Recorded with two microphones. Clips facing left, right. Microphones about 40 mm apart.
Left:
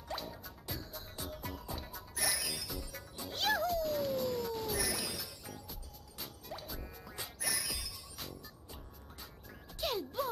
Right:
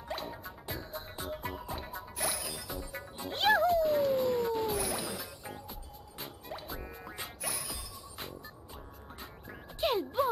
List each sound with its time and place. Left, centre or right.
0.3 s music: right
3.3 s cat: right
9.5 s music: right